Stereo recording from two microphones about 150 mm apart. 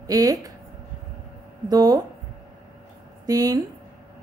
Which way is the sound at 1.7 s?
25° right (ahead or behind).